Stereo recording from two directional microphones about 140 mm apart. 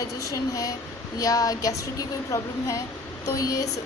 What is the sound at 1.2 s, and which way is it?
Speech, 25° left (ahead or behind).